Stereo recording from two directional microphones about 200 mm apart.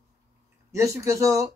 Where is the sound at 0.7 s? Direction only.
15° right (ahead or behind).